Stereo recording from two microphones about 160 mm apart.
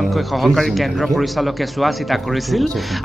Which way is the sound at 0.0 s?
Centre (ahead or behind).